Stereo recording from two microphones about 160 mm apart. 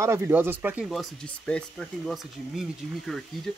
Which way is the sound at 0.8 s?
5° left (ahead or behind).